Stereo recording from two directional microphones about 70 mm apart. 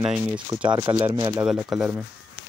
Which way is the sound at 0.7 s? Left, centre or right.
Right.